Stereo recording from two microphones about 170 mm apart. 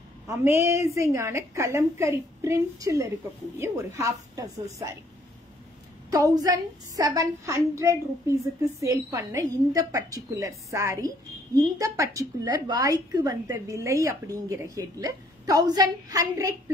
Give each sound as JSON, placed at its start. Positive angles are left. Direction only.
{"t": 0.3, "sound": "a woman's voice", "side_deg": -15}
{"t": 6.0, "sound": "a woman's voice", "side_deg": -20}